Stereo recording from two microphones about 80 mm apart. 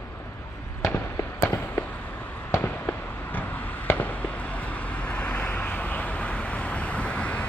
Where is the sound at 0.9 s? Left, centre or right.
Left.